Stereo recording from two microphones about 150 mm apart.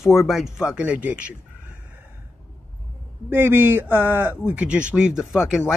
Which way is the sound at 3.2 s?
15° right (ahead or behind).